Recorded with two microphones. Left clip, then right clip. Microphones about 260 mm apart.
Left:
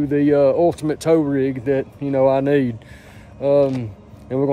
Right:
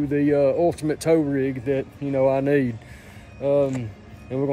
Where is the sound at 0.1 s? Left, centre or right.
Centre.